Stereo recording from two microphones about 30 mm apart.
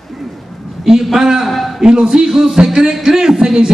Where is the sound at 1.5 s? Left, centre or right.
Centre.